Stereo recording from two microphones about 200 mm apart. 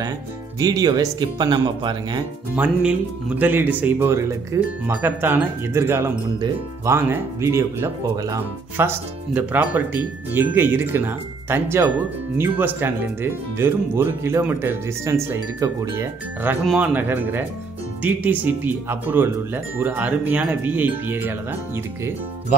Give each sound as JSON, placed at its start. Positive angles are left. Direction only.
{"t": 0.6, "sound": "speech", "side_deg": -20}
{"t": 2.5, "sound": "speech", "side_deg": -5}